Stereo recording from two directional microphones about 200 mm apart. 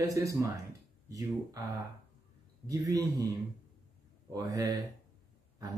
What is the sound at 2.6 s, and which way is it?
Speech, 20° right (ahead or behind).